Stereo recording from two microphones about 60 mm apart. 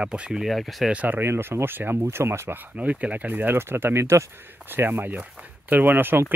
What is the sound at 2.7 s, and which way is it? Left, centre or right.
Speech, right.